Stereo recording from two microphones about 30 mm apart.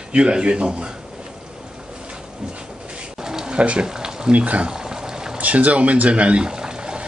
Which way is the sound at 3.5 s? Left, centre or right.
Right.